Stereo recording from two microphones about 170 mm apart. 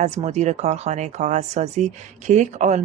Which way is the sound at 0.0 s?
40° right (ahead or behind).